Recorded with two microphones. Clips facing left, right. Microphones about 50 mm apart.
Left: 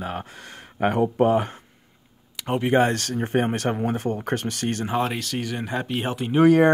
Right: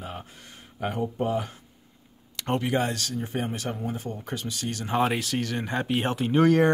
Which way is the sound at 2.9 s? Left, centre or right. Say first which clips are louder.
Left 6 dB; left.